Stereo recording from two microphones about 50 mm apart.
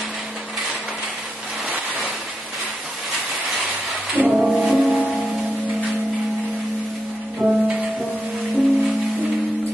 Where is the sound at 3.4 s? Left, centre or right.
Centre.